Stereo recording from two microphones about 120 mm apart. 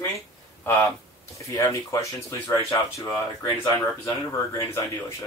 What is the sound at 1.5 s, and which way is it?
Speech, 25° left (ahead or behind).